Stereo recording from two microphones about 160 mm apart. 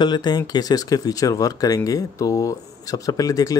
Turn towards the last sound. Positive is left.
turn(degrees=20)  # may be behind; listen again after turning